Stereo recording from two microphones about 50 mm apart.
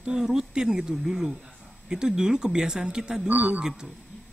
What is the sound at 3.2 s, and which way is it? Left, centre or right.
Speech, right.